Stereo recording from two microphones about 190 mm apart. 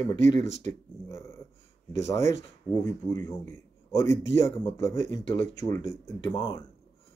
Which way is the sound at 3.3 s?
15° left (ahead or behind).